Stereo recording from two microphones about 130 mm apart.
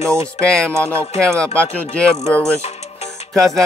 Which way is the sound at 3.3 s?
Centre (ahead or behind).